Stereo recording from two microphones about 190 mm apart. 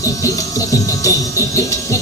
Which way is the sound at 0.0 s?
15° left (ahead or behind).